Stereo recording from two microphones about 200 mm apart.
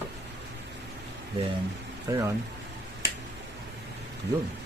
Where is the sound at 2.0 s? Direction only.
15° right (ahead or behind).